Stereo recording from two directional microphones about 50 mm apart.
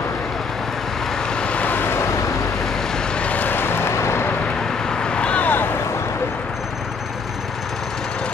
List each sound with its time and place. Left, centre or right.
1.3 s vehicle: left
1.8 s vehicle: left
3.2 s vehicle: left
3.4 s vehicle: left
3.9 s vehicle: left
4.8 s vehicle: centre